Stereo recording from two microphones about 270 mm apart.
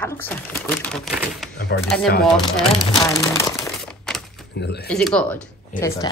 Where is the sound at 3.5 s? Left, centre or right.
Centre.